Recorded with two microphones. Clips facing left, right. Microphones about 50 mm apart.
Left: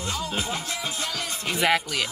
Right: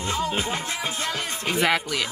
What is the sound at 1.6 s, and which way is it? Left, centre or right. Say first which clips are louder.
Speech: left 1 dB; centre.